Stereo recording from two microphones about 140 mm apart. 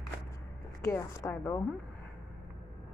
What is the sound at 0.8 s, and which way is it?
Speech, 20° left (ahead or behind).